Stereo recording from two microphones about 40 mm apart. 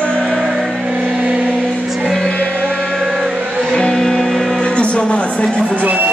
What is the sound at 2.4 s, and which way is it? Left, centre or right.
Music, left.